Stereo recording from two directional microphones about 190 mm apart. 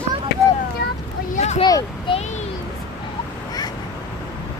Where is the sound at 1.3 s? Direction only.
35° left (ahead or behind).